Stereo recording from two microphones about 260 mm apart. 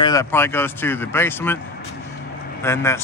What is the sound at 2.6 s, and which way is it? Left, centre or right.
Speech, centre.